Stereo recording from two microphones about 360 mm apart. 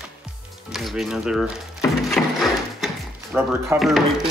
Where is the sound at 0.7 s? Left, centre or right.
Centre.